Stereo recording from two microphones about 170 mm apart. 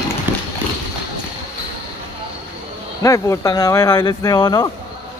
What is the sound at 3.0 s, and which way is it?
Speech, 20° left (ahead or behind).